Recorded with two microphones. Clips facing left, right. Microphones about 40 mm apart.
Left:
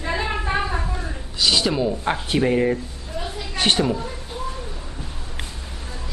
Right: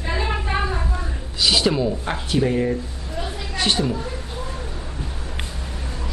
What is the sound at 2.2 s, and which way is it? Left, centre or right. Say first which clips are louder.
Speech: left 1 dB; left.